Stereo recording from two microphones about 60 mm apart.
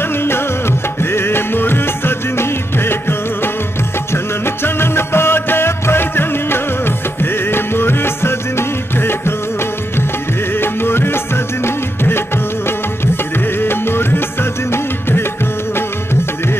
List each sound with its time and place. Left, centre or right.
1.1 s music: left
4.6 s music: left
10.6 s music: left